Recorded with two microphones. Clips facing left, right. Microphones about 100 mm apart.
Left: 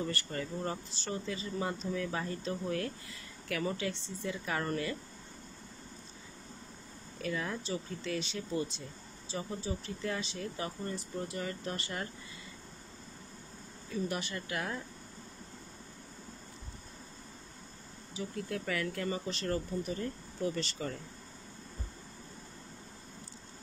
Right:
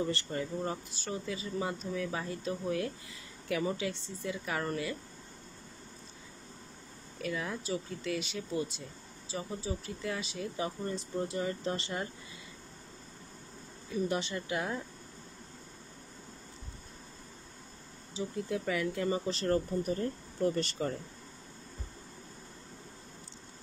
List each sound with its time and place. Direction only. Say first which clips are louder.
0.0 s speech: right 3 dB; 20° right (ahead or behind); by 4.9 s 5° right (ahead or behind)
7.2 s speech: even; 5° right (ahead or behind)
10.6 s speech: right 5 dB; 20° right (ahead or behind)
13.9 s speech: right 3 dB; 25° right (ahead or behind)
18.1 s speech: right 3 dB; 15° right (ahead or behind)
19.2 s speech: right 5 dB; 35° right (ahead or behind)
19.8 s speech: right 4 dB; 45° right (ahead or behind)